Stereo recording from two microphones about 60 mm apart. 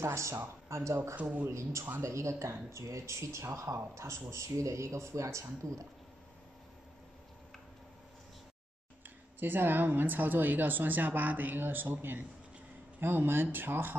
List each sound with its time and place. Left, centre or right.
0.0 s speech: right
9.0 s speech: right